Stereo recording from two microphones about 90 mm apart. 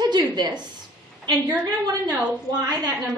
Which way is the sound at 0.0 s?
55° right (ahead or behind).